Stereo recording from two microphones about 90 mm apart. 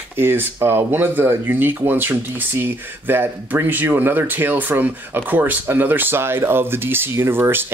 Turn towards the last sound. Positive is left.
turn(degrees=-25)  # may be behind; listen again after turning